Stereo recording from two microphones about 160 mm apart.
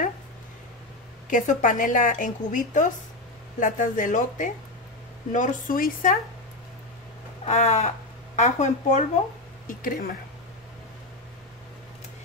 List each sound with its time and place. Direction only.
1.3 s a woman's voice: 55° left (ahead or behind)
7.4 s a woman's voice: 45° left (ahead or behind)
9.7 s speech: 60° left (ahead or behind)